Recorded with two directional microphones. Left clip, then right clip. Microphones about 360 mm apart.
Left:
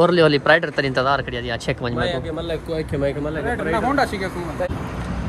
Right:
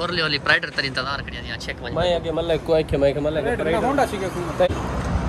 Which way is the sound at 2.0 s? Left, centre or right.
Centre.